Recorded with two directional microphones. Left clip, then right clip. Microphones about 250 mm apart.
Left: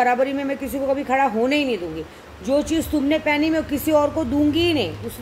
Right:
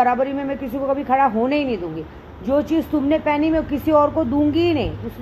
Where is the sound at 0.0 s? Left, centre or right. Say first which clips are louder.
Right 1 dB; centre.